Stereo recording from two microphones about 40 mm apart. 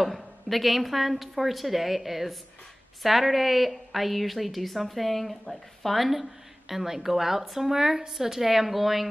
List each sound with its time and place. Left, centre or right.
0.0 s a woman's voice: centre